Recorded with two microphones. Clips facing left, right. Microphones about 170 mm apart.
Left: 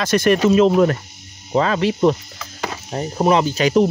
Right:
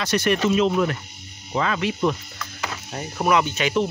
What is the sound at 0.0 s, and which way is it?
Speech, 45° left (ahead or behind).